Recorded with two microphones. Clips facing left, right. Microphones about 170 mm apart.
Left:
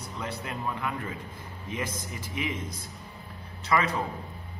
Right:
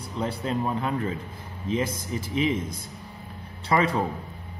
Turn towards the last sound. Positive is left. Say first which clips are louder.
# right 4 dB
turn(degrees=-30)  # may be behind; listen again after turning